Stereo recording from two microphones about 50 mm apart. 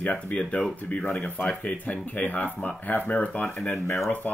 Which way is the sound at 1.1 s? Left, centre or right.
Left.